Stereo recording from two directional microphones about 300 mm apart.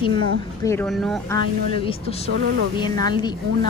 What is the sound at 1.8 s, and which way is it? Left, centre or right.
Speech, centre.